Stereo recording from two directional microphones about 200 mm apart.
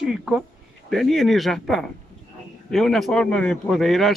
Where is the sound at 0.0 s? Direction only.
5° right (ahead or behind).